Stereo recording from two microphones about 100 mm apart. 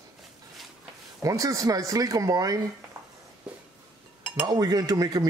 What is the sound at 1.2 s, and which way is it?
Speech, 35° right (ahead or behind).